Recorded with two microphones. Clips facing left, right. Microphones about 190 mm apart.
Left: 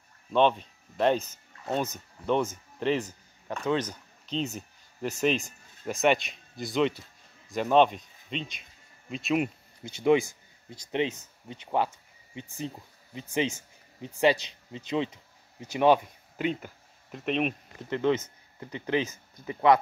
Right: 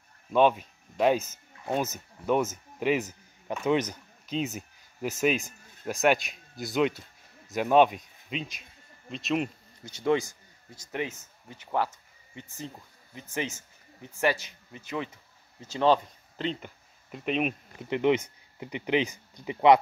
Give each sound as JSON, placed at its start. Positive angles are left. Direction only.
{"t": 0.3, "sound": "speech", "side_deg": -10}
{"t": 10.7, "sound": "speech", "side_deg": 25}
{"t": 17.1, "sound": "speech", "side_deg": 0}
{"t": 17.8, "sound": "speech", "side_deg": -15}